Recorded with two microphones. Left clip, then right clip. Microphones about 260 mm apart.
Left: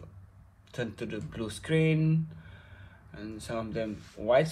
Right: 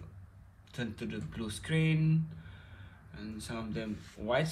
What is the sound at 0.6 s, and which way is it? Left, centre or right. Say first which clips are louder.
Speech: left 5 dB; centre.